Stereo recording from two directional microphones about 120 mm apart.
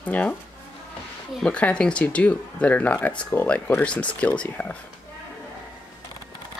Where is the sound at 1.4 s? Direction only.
10° left (ahead or behind).